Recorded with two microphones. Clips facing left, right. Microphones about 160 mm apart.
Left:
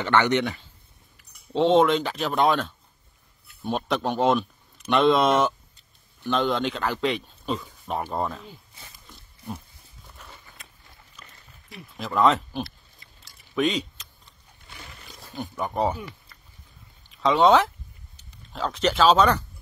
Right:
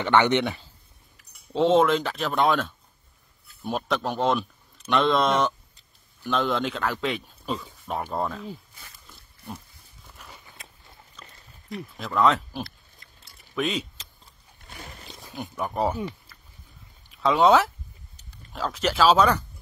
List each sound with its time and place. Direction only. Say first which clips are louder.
0.0 s speech: right 1 dB; 20° right (ahead or behind)
1.5 s speech: left 1 dB; centre (ahead or behind)
3.7 s speech: left 2 dB; centre (ahead or behind)
9.0 s pig: left 4 dB; centre (ahead or behind)
10.1 s a sound: even; 5° right (ahead or behind)
11.7 s speech: even; centre (ahead or behind)
13.4 s a sound: left 3 dB; centre (ahead or behind)
14.7 s biting: right 3 dB; 45° right (ahead or behind)
15.2 s speech: left 1 dB; centre (ahead or behind)
17.1 s speech: left 1 dB; 5° right (ahead or behind)